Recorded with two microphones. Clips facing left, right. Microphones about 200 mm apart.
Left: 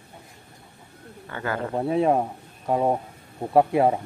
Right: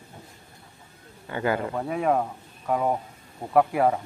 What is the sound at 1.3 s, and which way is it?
Speech, 15° right (ahead or behind).